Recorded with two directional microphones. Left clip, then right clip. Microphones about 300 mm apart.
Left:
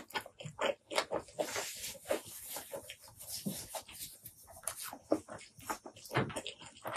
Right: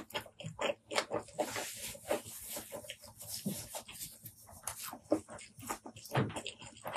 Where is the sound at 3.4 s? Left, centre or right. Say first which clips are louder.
Left 1 dB; centre.